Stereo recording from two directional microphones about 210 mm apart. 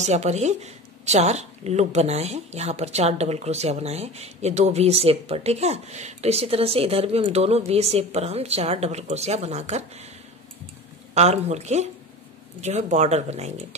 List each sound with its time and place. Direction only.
0.0 s speech: 30° right (ahead or behind)
11.1 s speech: 30° right (ahead or behind)